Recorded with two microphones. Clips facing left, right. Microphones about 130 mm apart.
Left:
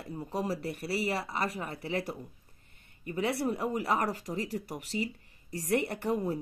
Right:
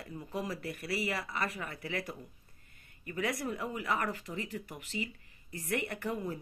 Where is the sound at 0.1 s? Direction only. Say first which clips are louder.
Left 5 dB; 35° left (ahead or behind).